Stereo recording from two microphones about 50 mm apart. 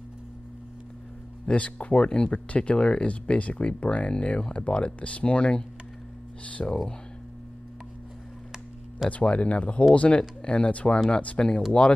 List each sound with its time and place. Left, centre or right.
1.4 s speech: left
9.1 s speech: left